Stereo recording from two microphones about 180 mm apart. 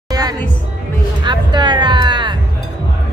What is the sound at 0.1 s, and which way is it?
Music, 20° right (ahead or behind).